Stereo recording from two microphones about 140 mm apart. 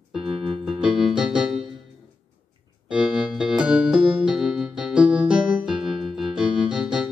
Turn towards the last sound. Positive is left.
turn(degrees=-5)  # may be behind; listen again after turning